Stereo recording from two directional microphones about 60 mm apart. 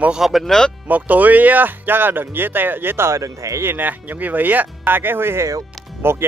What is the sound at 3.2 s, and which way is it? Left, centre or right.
Speech, right.